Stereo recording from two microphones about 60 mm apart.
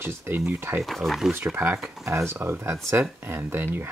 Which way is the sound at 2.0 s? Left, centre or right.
Right.